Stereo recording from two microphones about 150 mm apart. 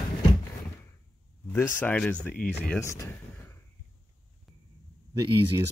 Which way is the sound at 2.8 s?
20° left (ahead or behind).